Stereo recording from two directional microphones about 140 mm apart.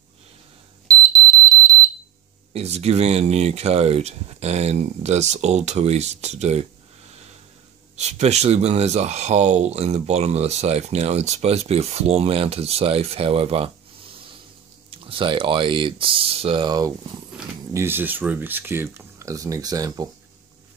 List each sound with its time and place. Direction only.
0.8 s alarm: 25° right (ahead or behind)
2.5 s speech: 50° right (ahead or behind)
7.9 s speech: 50° right (ahead or behind)
14.9 s speech: 40° right (ahead or behind)
16.6 s speech: 30° right (ahead or behind)
17.7 s speech: 15° right (ahead or behind)